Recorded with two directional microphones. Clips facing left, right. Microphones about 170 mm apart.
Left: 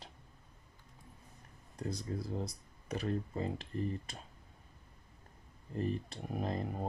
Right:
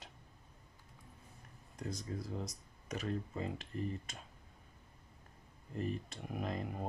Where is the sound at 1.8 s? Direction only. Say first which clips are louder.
Left 3 dB; 35° left (ahead or behind).